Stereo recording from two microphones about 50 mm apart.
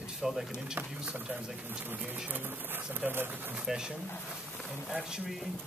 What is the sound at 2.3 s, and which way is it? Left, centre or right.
Speech, right.